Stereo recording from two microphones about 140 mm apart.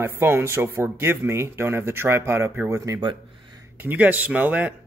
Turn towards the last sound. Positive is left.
turn(degrees=-10)  # may be behind; listen again after turning